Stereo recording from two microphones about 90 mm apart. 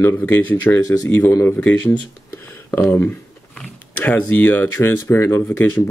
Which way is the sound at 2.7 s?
30° left (ahead or behind).